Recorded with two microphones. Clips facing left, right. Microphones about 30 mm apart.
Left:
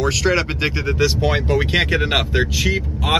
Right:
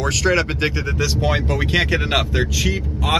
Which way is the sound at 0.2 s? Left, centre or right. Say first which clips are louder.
Even; centre.